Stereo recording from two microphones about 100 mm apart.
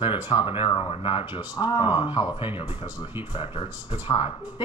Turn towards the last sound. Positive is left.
turn(degrees=50)  # may be behind; listen again after turning